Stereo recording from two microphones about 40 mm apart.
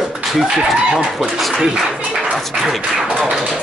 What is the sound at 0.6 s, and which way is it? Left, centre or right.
Speech, right.